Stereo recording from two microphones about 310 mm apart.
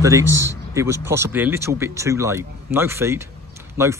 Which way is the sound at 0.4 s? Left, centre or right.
Centre.